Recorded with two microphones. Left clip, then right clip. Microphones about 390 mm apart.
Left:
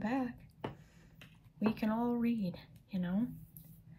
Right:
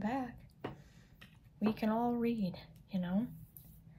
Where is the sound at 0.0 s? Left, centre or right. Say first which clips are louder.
Left 1 dB; centre.